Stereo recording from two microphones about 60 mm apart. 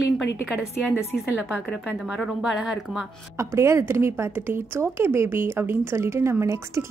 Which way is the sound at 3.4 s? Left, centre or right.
Right.